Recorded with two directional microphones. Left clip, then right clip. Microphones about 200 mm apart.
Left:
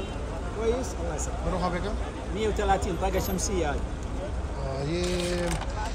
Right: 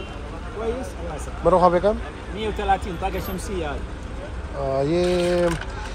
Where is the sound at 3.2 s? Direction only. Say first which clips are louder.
Even; 50° right (ahead or behind).